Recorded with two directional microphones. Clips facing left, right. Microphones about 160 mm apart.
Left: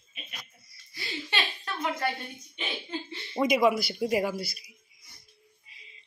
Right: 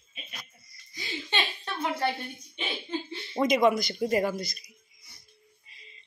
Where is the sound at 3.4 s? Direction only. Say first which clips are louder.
Right 1 dB; 10° left (ahead or behind).